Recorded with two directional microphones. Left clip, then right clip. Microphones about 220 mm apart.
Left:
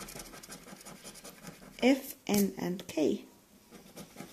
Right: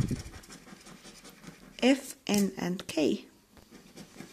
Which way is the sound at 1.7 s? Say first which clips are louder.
Right 2 dB; 15° right (ahead or behind).